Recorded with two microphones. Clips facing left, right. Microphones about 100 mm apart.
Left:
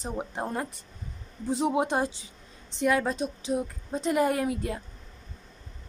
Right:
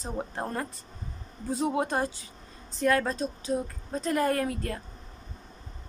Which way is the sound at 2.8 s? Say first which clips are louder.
Even; 10° left (ahead or behind).